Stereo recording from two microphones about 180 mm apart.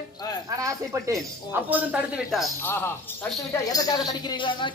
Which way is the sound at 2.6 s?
15° left (ahead or behind).